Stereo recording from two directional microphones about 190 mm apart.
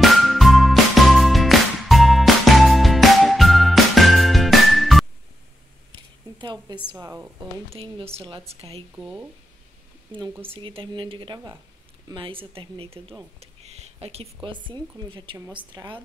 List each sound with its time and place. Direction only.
0.0 s music: centre (ahead or behind)
6.3 s a sound: 25° right (ahead or behind)
6.9 s speech: 15° right (ahead or behind)
7.7 s speech: 30° right (ahead or behind)
8.9 s speech: 5° right (ahead or behind)
10.5 s a woman's voice: 30° right (ahead or behind)